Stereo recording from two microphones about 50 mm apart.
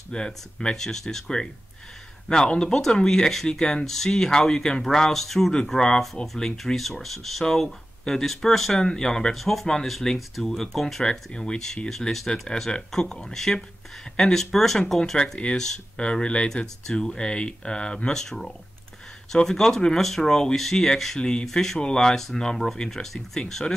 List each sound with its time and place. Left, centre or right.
0.1 s speech: centre
2.2 s speech: centre
5.5 s speech: centre
9.3 s speech: centre
11.1 s speech: centre
15.4 s speech: left; by 23.4 s centre